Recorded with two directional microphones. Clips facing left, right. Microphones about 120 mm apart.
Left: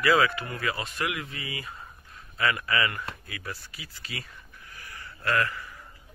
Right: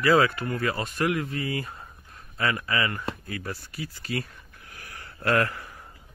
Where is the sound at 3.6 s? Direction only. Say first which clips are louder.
Right 9 dB; 50° right (ahead or behind).